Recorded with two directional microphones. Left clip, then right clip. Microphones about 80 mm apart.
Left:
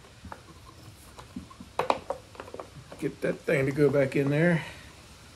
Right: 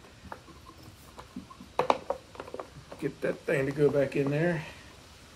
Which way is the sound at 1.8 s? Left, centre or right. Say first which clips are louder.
Right 1 dB; centre.